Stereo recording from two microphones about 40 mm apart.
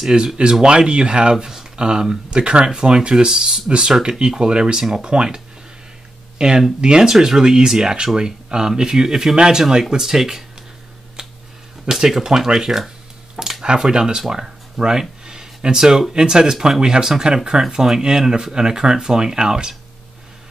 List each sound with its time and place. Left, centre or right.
0.4 s speech: right
1.3 s speech: centre
11.9 s speech: centre
14.3 s a sound: centre
16.1 s speech: centre